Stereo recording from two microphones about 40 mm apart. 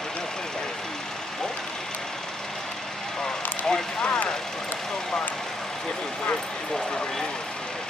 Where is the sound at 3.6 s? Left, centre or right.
Centre.